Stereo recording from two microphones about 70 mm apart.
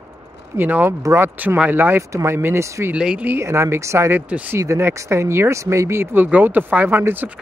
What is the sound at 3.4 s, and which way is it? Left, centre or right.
Speech, right.